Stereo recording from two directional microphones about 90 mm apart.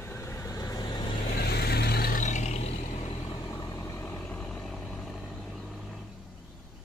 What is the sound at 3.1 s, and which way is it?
Vehicle, 85° left.